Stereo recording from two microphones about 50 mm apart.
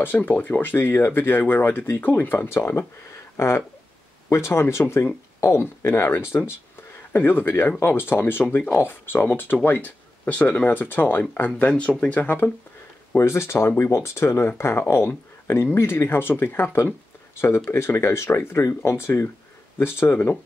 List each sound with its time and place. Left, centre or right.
0.0 s speech: left
3.3 s speech: left
7.1 s speech: left
10.7 s speech: left
13.2 s speech: left